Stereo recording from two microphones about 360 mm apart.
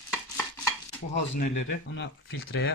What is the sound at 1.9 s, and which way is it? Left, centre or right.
Speech, left.